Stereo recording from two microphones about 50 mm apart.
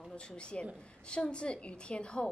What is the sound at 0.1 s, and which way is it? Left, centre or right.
A woman's voice, left.